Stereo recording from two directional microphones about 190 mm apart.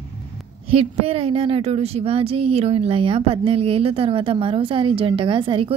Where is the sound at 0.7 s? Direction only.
30° right (ahead or behind).